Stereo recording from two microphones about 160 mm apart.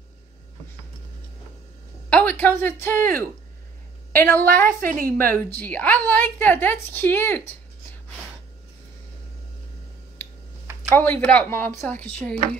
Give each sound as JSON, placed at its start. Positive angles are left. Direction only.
{"t": 2.0, "sound": "a woman's voice", "side_deg": 10}
{"t": 4.6, "sound": "a woman's voice", "side_deg": -60}
{"t": 5.0, "sound": "a woman's voice", "side_deg": 10}
{"t": 11.0, "sound": "a woman's voice", "side_deg": 10}